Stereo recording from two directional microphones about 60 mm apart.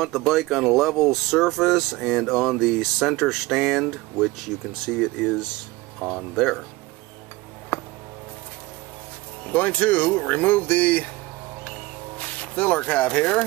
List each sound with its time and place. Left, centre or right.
0.3 s speech: centre
7.7 s music: left
9.5 s speech: left
12.2 s speech: left